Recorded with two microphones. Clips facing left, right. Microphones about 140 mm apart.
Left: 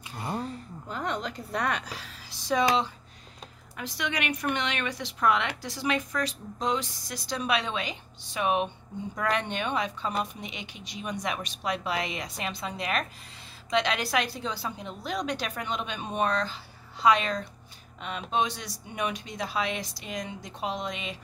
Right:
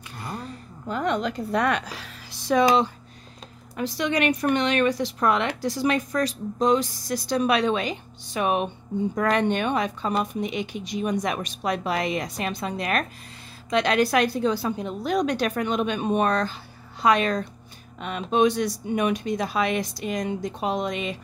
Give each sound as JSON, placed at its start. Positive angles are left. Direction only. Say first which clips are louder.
{"t": 0.2, "sound": "a sound", "louder": "left 2 dB", "side_deg": 25}
{"t": 0.8, "sound": "a woman's voice", "louder": "right 7 dB", "side_deg": -75}
{"t": 3.7, "sound": "speech", "louder": "right 8 dB", "side_deg": -35}